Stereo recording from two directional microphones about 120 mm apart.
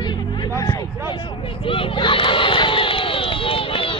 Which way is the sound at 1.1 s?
40° left (ahead or behind).